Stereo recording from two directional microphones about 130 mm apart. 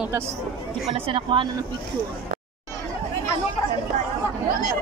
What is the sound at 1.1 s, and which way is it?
Speech, 40° right (ahead or behind).